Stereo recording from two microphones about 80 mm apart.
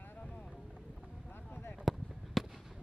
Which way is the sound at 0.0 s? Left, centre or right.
Centre.